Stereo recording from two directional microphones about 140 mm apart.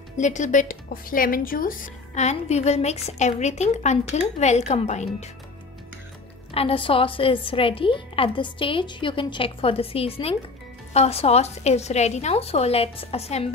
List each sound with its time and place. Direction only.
0.2 s speech: 60° left (ahead or behind); by 1.9 s 80° left
2.1 s a woman's voice: 50° left (ahead or behind)
6.5 s a woman's voice: 40° left (ahead or behind)